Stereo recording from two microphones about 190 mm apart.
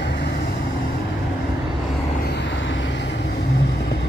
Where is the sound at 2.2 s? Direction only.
65° left (ahead or behind).